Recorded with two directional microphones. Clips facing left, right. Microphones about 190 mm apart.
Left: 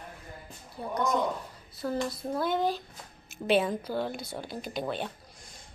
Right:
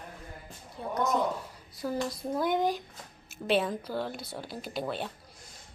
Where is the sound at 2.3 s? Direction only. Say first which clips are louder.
Right 1 dB; 15° right (ahead or behind).